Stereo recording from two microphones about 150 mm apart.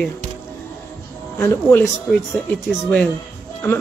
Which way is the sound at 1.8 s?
Centre (ahead or behind).